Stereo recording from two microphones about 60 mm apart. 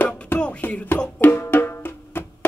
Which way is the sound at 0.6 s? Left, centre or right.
Left.